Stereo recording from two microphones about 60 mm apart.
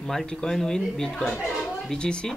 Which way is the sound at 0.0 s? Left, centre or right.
Centre.